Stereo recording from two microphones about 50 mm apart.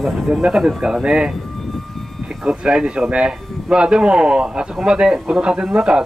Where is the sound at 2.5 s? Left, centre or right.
Right.